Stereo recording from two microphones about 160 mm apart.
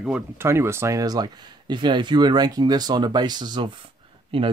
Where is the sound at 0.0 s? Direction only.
10° right (ahead or behind).